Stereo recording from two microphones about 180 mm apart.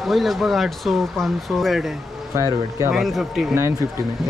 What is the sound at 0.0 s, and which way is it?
Speech, centre (ahead or behind).